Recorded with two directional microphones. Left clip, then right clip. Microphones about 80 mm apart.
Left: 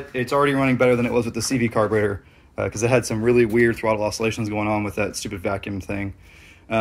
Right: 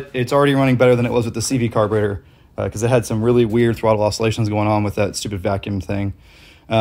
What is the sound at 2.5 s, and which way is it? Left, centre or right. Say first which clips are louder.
Speech: right 2 dB; centre.